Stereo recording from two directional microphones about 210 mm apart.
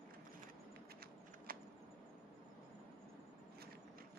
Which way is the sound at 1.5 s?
45° right (ahead or behind).